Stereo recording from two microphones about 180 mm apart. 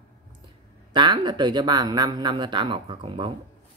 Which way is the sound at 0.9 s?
25° right (ahead or behind).